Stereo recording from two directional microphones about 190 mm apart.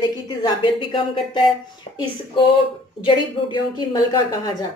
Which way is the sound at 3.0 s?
25° left (ahead or behind).